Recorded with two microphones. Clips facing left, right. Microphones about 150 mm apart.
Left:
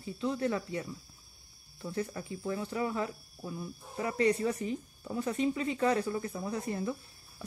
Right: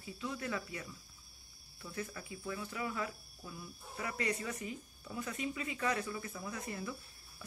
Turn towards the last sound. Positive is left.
turn(degrees=30)  # may be behind; listen again after turning